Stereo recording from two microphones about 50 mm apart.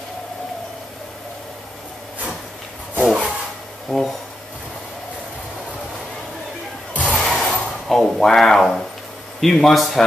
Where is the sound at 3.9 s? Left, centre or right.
Centre.